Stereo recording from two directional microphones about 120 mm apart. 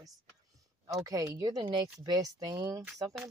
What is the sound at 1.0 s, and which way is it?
Speech, 30° right (ahead or behind).